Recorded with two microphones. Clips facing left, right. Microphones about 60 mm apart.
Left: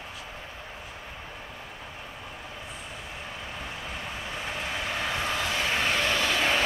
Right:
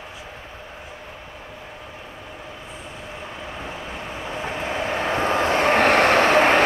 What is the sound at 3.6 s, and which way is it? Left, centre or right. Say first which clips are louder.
Vehicle: right 4 dB; right.